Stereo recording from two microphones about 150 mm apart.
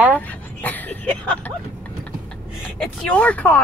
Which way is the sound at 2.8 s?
5° left (ahead or behind).